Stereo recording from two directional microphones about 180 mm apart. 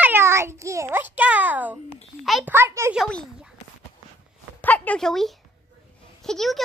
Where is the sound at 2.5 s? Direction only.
15° right (ahead or behind).